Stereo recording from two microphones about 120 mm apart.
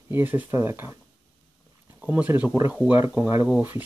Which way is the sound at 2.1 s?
15° right (ahead or behind).